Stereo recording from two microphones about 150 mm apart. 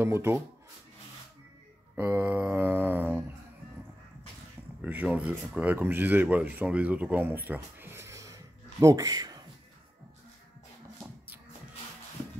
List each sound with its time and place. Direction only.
0.0 s speech: 15° right (ahead or behind)
2.0 s speech: 15° right (ahead or behind)
4.8 s speech: 10° right (ahead or behind); by 9.4 s 25° right (ahead or behind)